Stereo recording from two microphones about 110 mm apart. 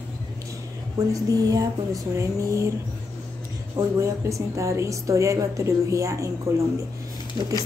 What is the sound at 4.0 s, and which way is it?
A woman's voice, 25° right (ahead or behind).